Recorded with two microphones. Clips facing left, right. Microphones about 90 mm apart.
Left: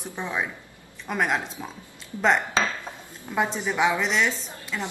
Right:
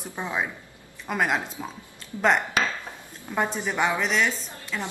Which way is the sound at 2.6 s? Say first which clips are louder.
Left 1 dB; 25° left (ahead or behind).